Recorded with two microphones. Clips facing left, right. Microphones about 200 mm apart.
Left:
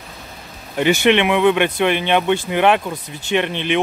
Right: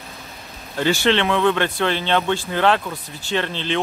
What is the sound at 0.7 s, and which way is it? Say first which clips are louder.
Speech: left 4 dB; 15° left (ahead or behind).